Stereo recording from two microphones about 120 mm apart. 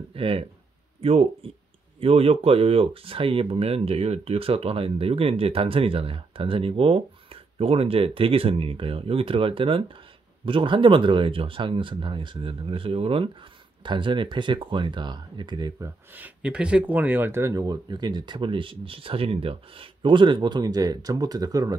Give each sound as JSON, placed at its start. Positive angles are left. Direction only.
{"t": 0.1, "sound": "speech", "side_deg": -50}
{"t": 16.4, "sound": "speech", "side_deg": -10}